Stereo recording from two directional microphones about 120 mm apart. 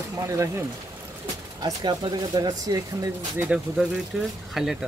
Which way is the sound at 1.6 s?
35° right (ahead or behind).